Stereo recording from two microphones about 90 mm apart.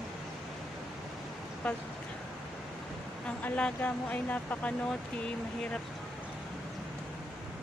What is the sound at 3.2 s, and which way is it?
Speech, 15° left (ahead or behind).